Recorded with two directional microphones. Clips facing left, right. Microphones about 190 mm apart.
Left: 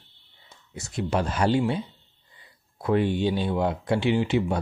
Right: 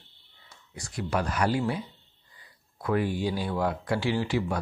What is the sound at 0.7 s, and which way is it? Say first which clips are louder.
Speech: left 3 dB; 25° left (ahead or behind).